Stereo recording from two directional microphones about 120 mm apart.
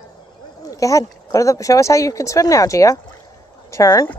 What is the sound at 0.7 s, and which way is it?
Speech, 30° left (ahead or behind).